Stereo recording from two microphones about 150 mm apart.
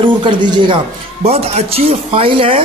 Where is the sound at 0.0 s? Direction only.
30° right (ahead or behind).